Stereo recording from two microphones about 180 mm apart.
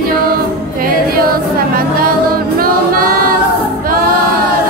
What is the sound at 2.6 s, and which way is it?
Music, 55° right (ahead or behind).